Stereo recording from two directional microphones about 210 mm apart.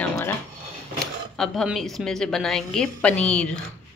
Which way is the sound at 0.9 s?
Centre (ahead or behind).